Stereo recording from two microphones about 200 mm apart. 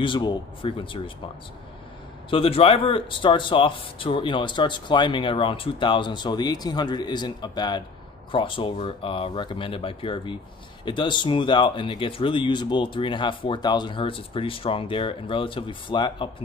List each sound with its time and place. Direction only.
0.0 s a man's voice: 25° left (ahead or behind)
2.3 s a man's voice: 30° left (ahead or behind)